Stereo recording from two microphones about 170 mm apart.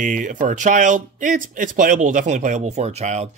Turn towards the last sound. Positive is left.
turn(degrees=-40)  # may be behind; listen again after turning